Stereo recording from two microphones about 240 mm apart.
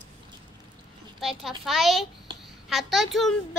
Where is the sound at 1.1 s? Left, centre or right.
Centre.